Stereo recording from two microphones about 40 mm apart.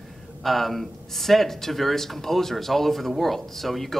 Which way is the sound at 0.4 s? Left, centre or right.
Centre.